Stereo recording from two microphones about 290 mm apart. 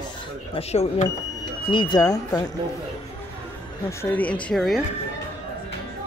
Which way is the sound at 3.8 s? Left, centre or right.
Centre.